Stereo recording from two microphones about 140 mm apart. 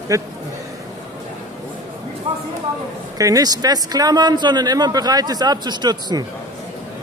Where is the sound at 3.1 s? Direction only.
25° right (ahead or behind).